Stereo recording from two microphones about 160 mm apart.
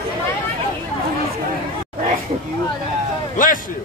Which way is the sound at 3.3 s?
55° left (ahead or behind).